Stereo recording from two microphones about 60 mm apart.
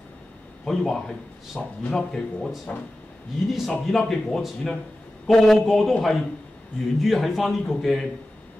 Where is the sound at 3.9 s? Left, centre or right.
Centre.